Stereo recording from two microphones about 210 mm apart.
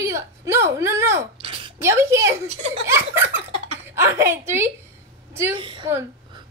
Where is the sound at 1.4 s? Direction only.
25° right (ahead or behind).